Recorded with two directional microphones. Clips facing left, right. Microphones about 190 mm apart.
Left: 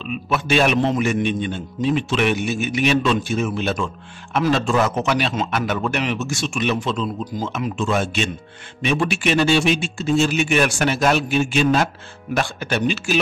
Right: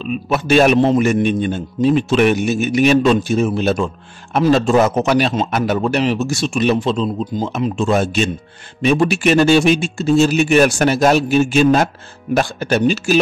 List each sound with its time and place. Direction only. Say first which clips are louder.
0.0 s a man's voice: right 4 dB; 40° right (ahead or behind)